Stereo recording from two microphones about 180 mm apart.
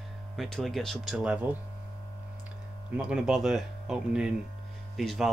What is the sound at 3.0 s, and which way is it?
Speech, 5° right (ahead or behind).